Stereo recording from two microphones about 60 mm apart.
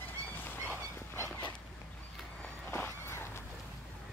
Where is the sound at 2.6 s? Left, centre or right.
Left.